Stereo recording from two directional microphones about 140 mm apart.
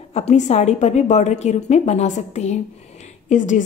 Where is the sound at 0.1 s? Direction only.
55° left (ahead or behind).